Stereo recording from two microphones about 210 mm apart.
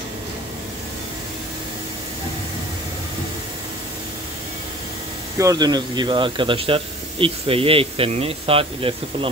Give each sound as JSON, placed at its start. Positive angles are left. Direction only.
{"t": 5.4, "sound": "speech", "side_deg": -20}